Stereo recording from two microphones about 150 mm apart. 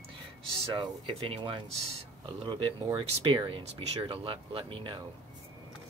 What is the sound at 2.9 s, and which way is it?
Speech, 30° right (ahead or behind).